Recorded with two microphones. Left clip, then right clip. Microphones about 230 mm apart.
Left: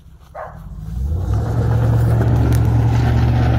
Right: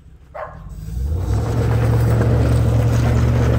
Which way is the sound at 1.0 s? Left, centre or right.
Centre.